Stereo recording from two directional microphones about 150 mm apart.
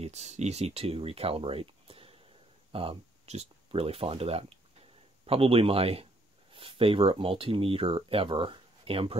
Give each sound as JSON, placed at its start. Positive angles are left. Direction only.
{"t": 0.0, "sound": "speech", "side_deg": -50}